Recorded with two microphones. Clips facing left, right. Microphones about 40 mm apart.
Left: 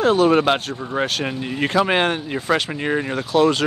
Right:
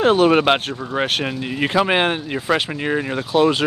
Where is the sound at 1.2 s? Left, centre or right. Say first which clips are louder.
Right 1 dB; centre.